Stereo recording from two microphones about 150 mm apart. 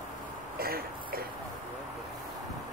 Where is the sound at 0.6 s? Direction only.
90° right.